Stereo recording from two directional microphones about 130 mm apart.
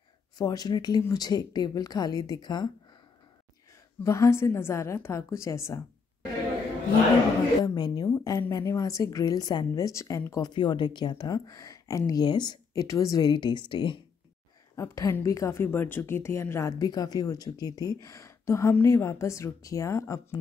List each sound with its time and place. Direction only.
0.4 s speech: 30° left (ahead or behind)
4.0 s a woman's voice: 20° left (ahead or behind)
7.6 s a woman's voice: 30° left (ahead or behind)
10.5 s speech: 35° left (ahead or behind)
14.8 s a woman's voice: 25° left (ahead or behind)